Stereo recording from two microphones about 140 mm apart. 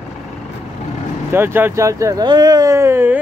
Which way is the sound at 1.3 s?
15° right (ahead or behind).